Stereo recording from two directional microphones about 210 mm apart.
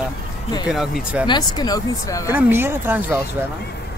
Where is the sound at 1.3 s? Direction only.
20° left (ahead or behind).